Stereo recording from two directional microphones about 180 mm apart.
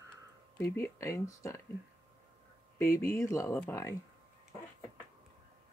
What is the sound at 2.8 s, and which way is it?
Speech, 15° left (ahead or behind).